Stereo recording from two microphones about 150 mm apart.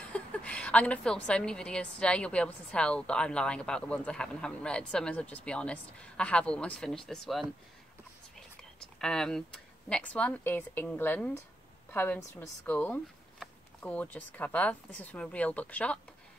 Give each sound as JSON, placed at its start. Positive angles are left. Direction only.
{"t": 0.1, "sound": "a woman's voice", "side_deg": 10}
{"t": 9.0, "sound": "a woman's voice", "side_deg": 5}